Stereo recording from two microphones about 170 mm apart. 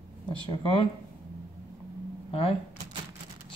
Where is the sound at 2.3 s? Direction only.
35° left (ahead or behind).